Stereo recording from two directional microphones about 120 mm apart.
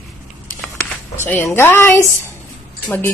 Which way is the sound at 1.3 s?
20° left (ahead or behind).